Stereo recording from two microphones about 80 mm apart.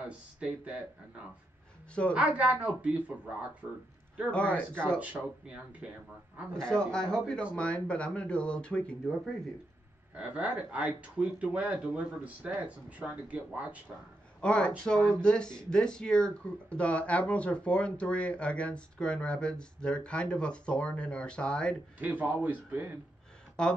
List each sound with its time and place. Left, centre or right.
0.4 s speech: centre
2.1 s speech: centre
4.3 s speech: centre
4.9 s a man's voice: centre
6.6 s speech: centre
10.1 s speech: centre
14.4 s speech: centre
21.9 s a man's voice: right
23.6 s speech: centre